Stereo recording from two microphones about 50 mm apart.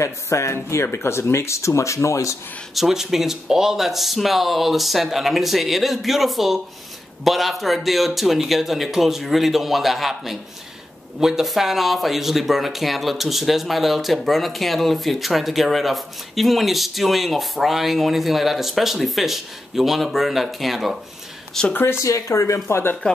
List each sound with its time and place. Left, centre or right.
0.0 s speech: left
0.9 s speech: left
2.7 s speech: centre
21.5 s speech: centre
22.0 s speech: left